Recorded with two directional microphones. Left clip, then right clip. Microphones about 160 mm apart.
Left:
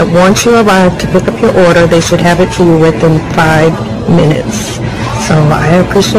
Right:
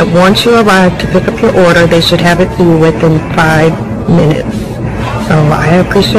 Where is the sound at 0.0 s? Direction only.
5° left (ahead or behind); by 3.0 s 25° left (ahead or behind).